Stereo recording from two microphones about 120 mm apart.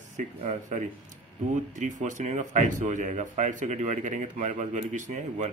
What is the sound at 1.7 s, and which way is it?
Speech, 90° right.